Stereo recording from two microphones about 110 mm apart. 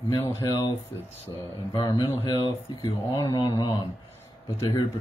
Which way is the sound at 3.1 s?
35° left (ahead or behind).